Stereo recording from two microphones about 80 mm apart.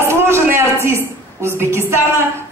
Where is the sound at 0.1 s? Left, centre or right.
Right.